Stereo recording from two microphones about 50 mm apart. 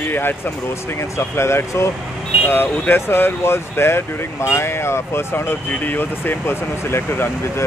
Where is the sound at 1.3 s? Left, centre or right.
Left.